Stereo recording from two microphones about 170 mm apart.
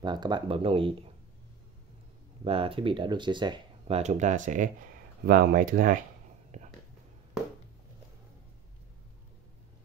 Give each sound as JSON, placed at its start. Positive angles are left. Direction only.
{"t": 0.0, "sound": "speech", "side_deg": -25}
{"t": 2.4, "sound": "speech", "side_deg": -30}
{"t": 5.2, "sound": "speech", "side_deg": -60}
{"t": 6.5, "sound": "a sound", "side_deg": -40}